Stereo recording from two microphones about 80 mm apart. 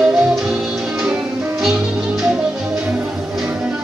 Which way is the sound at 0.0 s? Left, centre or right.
Centre.